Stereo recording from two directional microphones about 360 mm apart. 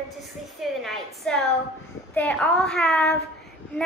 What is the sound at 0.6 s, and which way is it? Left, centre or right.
A woman's voice, centre.